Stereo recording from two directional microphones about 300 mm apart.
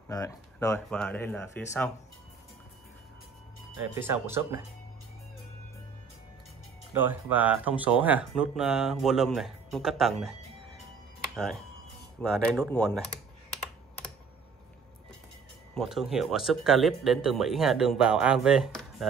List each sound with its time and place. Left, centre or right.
0.1 s speech: centre
3.9 s speech: centre
6.9 s speech: centre
12.2 s speech: centre
15.7 s speech: centre